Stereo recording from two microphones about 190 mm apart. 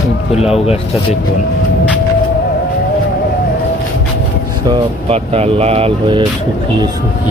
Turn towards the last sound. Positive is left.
turn(degrees=-30)  # may be behind; listen again after turning